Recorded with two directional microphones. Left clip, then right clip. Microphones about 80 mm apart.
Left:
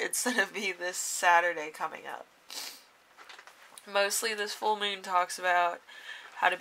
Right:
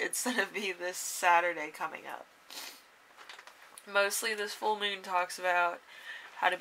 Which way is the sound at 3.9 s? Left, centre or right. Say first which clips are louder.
Left 1 dB; left.